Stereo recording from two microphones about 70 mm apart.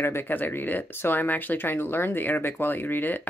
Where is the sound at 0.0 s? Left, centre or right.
Left.